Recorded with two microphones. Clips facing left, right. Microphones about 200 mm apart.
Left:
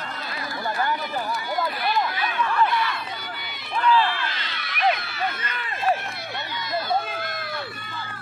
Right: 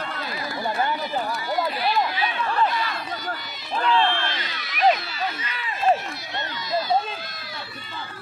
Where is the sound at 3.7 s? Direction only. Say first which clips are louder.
Left 1 dB; 25° right (ahead or behind).